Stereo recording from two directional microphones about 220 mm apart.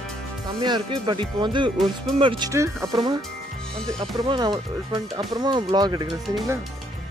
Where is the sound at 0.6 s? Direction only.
20° right (ahead or behind).